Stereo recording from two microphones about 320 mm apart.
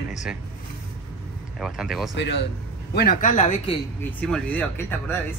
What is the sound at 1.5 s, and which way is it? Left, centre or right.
Speech, centre.